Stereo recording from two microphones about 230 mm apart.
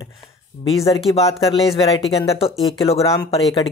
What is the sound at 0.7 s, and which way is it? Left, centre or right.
Speech, left.